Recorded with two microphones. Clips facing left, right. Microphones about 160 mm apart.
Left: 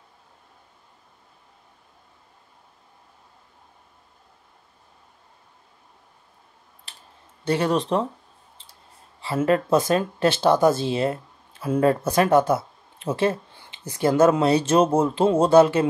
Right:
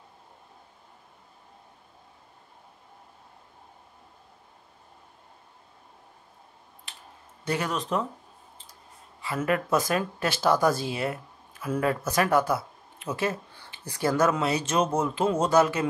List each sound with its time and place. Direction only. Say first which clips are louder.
6.9 s a sound: right 1 dB; 35° left (ahead or behind)
7.4 s speech: left 7 dB; 30° left (ahead or behind)
9.2 s speech: left 6 dB; 30° left (ahead or behind)